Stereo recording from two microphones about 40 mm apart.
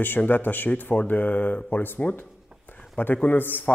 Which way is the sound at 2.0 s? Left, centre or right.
Left.